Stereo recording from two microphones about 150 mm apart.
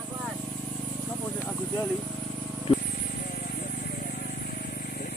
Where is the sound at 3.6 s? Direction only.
75° left (ahead or behind).